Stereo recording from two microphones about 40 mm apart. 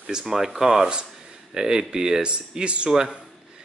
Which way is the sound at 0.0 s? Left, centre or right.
Centre.